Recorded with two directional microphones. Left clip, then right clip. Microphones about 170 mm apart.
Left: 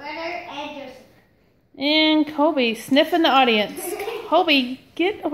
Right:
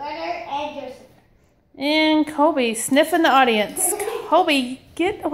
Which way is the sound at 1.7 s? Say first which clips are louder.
Even; 5° left (ahead or behind).